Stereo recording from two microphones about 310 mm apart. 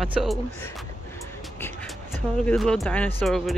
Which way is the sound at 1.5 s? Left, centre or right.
Centre.